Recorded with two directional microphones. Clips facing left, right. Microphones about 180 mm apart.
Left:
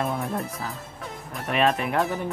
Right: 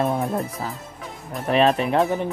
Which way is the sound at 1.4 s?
30° right (ahead or behind).